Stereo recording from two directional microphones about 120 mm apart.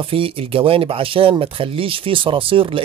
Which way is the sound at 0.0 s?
50° right (ahead or behind).